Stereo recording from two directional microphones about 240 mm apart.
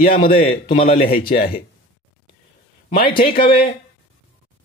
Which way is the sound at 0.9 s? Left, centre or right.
Left.